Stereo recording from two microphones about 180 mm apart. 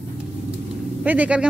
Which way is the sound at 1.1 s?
5° right (ahead or behind).